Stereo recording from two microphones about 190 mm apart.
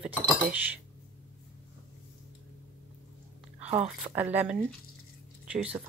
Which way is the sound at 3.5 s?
35° right (ahead or behind).